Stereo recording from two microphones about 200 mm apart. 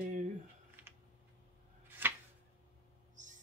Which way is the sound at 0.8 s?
10° right (ahead or behind).